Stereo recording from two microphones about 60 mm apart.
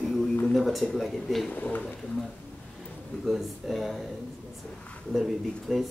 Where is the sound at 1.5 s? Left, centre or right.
Left.